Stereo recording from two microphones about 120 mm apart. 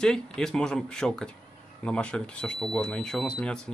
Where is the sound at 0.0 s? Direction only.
5° left (ahead or behind).